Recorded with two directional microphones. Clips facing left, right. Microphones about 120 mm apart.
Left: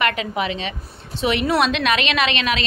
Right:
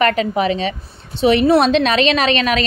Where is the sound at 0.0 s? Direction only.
35° right (ahead or behind).